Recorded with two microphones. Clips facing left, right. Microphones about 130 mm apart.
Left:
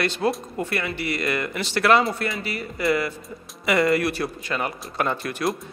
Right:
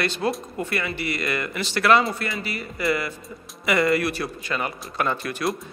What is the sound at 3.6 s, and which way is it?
Speech, 30° left (ahead or behind).